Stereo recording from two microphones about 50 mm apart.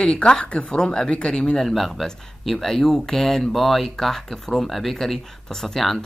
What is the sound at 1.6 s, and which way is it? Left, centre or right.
Speech, centre.